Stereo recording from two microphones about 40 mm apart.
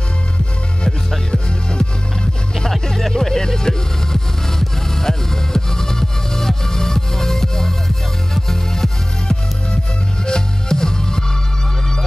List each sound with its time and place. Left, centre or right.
1.3 s music: centre
2.9 s music: centre